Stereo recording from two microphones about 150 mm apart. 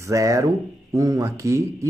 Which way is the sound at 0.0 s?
20° right (ahead or behind).